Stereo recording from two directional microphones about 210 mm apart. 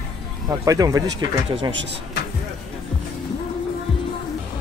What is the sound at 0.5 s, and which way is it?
Speech, 15° right (ahead or behind).